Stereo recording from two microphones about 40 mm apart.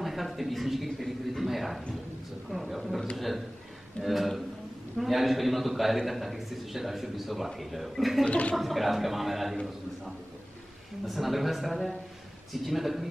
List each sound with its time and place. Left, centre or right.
0.0 s a sound: centre
2.5 s a man's voice: centre
8.3 s speech: left
8.5 s a man's voice: centre
11.1 s a man's voice: centre